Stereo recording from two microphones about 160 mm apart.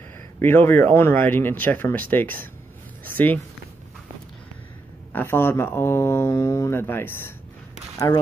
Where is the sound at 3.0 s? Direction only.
10° left (ahead or behind).